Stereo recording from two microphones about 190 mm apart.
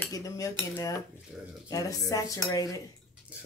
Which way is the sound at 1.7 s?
20° left (ahead or behind).